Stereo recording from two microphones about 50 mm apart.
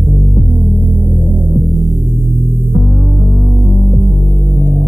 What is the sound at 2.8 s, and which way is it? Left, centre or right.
Music, right.